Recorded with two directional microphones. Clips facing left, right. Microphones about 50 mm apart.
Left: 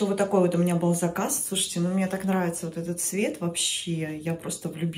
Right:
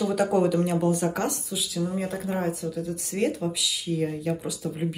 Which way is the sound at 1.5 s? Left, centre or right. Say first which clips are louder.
Left 1 dB; left.